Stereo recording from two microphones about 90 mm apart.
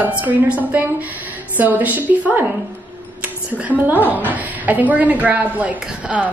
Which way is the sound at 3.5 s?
20° right (ahead or behind).